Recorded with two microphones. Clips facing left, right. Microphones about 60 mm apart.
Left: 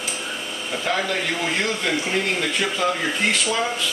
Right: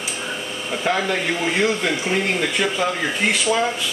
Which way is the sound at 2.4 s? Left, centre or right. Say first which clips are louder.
Right 2 dB; centre.